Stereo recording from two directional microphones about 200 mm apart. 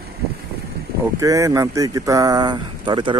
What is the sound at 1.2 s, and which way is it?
Speech, 15° right (ahead or behind).